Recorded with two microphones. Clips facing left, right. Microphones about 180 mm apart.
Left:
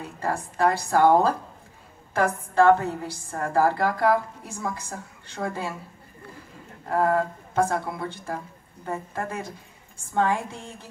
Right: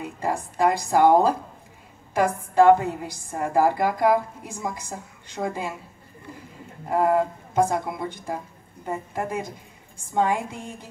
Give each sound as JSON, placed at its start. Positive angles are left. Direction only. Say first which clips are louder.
{"t": 0.0, "sound": "a woman's voice", "louder": "right 2 dB", "side_deg": -15}
{"t": 6.9, "sound": "a woman's voice", "louder": "right 2 dB", "side_deg": -15}